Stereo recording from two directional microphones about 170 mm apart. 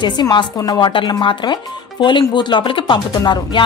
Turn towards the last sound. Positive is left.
turn(degrees=25)  # may be behind; listen again after turning